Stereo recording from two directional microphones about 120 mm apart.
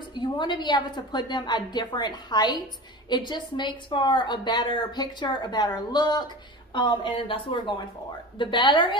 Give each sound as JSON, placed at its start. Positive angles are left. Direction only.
{"t": 0.1, "sound": "speech", "side_deg": 40}